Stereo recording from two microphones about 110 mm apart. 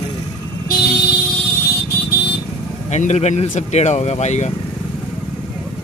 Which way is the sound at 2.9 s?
90° left.